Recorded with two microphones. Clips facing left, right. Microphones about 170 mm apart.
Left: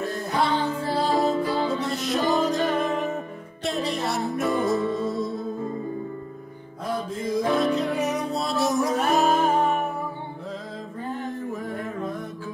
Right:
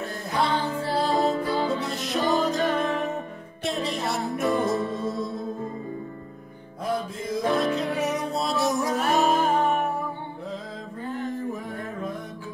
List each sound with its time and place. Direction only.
0.4 s music: centre (ahead or behind)
7.4 s music: centre (ahead or behind)
11.1 s music: 20° left (ahead or behind)